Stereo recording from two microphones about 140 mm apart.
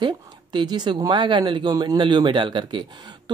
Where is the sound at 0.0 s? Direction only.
35° right (ahead or behind).